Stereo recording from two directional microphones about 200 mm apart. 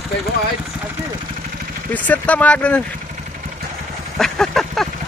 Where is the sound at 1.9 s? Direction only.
5° left (ahead or behind).